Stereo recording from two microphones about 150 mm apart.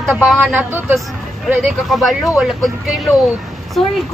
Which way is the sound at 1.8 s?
Centre (ahead or behind).